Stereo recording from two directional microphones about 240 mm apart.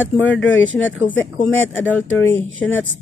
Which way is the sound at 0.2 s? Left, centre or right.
Left.